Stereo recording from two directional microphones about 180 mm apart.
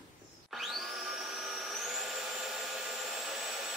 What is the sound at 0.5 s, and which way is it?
Vacuum cleaner, centre (ahead or behind).